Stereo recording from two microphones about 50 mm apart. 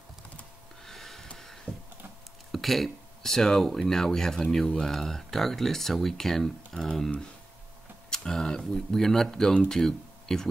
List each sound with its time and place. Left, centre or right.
0.8 s a sound: centre
2.5 s speech: centre
8.1 s speech: centre